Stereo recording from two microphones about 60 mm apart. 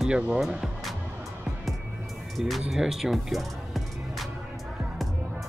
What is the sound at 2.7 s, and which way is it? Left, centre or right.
Music, centre.